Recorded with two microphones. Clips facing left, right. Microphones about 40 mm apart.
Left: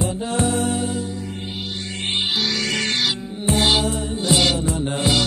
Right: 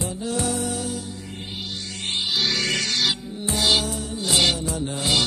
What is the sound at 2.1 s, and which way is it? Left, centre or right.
Music, left.